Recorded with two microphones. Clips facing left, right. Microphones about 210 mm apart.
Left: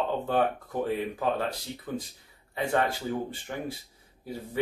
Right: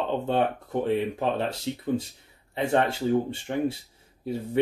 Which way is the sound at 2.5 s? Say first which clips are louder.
Right 3 dB; 25° right (ahead or behind).